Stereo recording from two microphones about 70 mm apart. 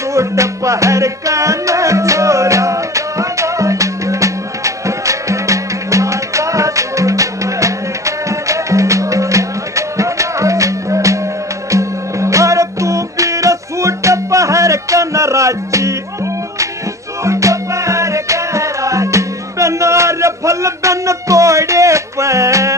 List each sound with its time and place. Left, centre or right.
0.1 s music: right
17.2 s music: right